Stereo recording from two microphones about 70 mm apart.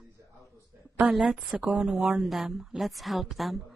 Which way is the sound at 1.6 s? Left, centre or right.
Centre.